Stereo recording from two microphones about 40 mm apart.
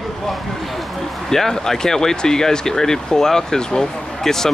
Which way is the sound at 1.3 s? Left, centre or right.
Centre.